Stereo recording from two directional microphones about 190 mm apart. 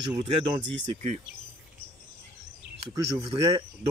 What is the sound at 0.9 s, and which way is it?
Speech, 40° right (ahead or behind).